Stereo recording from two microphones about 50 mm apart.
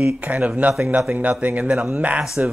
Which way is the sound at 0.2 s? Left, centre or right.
Right.